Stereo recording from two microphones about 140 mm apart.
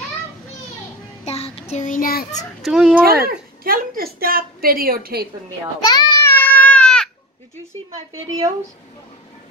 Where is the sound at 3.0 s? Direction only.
90° right.